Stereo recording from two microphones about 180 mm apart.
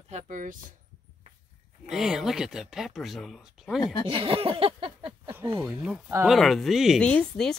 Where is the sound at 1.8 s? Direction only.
Centre (ahead or behind).